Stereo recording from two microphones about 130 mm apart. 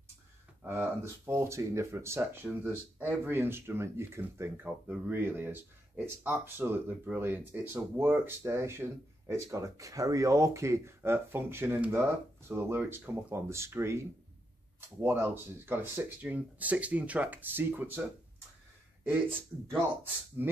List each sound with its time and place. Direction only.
0.7 s speech: 20° right (ahead or behind)
20.4 s speech: 15° right (ahead or behind)